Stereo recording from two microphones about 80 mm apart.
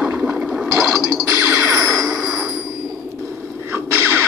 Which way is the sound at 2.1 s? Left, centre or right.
Centre.